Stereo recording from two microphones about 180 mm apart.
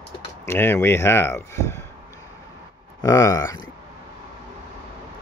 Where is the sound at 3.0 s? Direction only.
20° left (ahead or behind).